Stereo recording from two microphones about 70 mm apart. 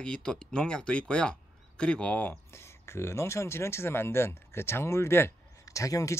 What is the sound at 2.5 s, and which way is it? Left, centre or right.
Speech, left.